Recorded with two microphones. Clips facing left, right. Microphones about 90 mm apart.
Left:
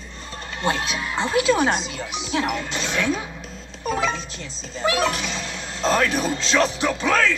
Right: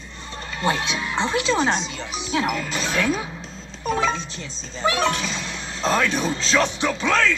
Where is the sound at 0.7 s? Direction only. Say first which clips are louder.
Right 1 dB; centre (ahead or behind).